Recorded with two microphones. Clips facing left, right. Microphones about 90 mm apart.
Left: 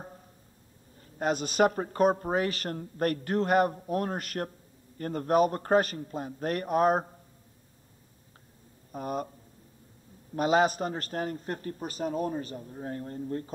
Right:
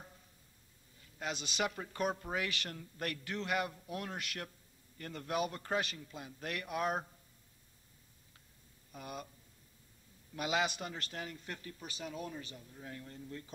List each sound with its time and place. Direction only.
1.1 s a woman's voice: 45° left (ahead or behind)
8.9 s a woman's voice: 45° left (ahead or behind)
10.3 s a man's voice: 40° left (ahead or behind)